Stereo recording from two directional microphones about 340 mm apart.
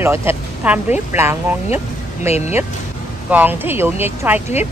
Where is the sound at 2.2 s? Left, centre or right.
Centre.